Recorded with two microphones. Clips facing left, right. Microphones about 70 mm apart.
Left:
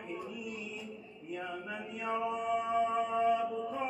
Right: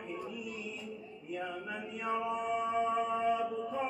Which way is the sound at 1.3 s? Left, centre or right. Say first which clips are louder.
Right 1 dB; centre.